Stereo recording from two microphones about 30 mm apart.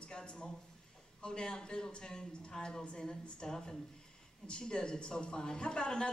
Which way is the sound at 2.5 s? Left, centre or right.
Centre.